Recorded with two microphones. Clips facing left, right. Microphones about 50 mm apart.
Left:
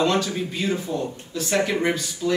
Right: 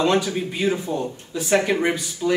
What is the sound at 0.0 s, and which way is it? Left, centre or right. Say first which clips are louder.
A man's voice: right 2 dB; centre.